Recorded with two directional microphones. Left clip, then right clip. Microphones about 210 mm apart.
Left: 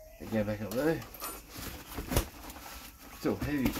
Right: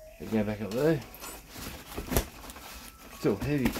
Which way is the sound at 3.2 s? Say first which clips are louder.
Right 4 dB; 45° right (ahead or behind).